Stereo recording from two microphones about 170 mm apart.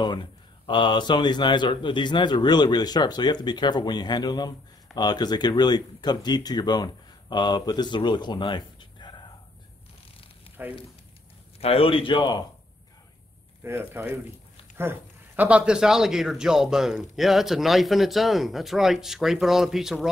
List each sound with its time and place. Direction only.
0.0 s speech: 25° left (ahead or behind)
10.6 s speech: 10° right (ahead or behind)
11.6 s speech: 35° left (ahead or behind)
13.7 s speech: 10° right (ahead or behind)